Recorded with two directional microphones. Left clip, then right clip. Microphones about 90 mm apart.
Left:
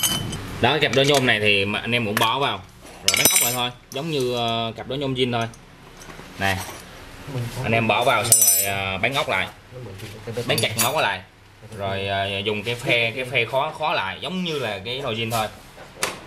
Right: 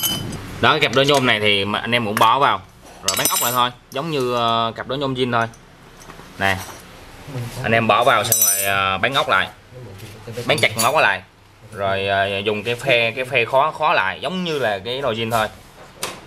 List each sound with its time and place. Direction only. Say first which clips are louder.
0.0 s chink: even; 20° left (ahead or behind)
0.6 s speech: right 3 dB; 25° right (ahead or behind)
7.3 s speech: even; 20° left (ahead or behind)
7.6 s speech: right 4 dB; 25° right (ahead or behind)
8.4 s a sound: right 4 dB; 20° right (ahead or behind)
10.4 s speech: right 5 dB; 20° right (ahead or behind)